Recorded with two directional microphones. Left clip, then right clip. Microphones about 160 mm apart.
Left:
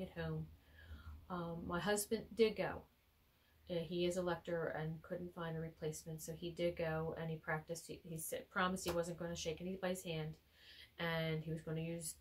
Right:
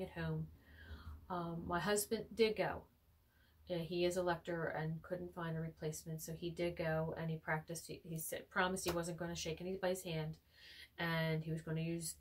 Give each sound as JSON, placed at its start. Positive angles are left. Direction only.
{"t": 0.0, "sound": "speech", "side_deg": 0}